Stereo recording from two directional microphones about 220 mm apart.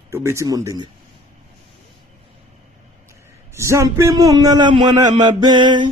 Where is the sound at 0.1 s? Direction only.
10° right (ahead or behind).